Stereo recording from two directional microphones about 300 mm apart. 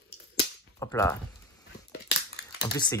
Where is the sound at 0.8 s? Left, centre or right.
Centre.